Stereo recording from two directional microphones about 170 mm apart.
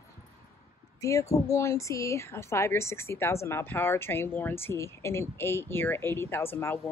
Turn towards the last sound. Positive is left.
turn(degrees=10)  # may be behind; listen again after turning